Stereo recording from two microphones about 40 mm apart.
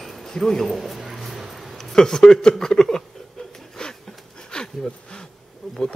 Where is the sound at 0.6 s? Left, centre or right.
Centre.